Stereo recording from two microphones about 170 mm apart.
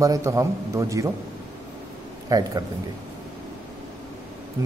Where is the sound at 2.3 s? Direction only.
20° right (ahead or behind).